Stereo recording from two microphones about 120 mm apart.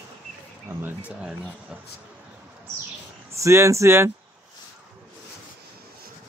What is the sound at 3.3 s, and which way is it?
Speech, 25° right (ahead or behind).